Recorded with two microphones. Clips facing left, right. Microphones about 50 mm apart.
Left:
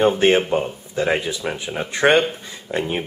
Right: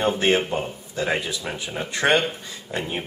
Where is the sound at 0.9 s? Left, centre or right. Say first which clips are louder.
Left 4 dB; centre.